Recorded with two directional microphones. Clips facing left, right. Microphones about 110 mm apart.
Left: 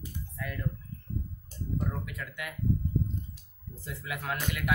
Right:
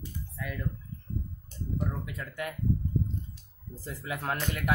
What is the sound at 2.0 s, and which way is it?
Speech, 30° right (ahead or behind).